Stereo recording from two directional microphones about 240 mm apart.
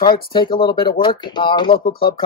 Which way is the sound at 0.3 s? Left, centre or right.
Centre.